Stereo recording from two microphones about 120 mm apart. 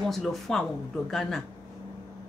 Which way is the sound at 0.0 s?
Centre (ahead or behind).